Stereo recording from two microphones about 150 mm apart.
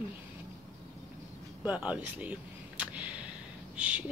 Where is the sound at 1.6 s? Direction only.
10° right (ahead or behind).